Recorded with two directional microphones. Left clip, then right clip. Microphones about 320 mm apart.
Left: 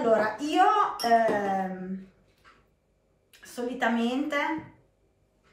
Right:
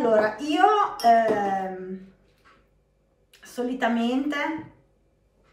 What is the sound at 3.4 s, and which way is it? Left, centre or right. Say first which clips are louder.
A man's voice: right 2 dB; centre.